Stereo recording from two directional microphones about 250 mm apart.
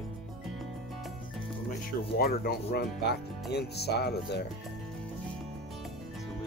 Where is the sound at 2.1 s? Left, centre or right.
Left.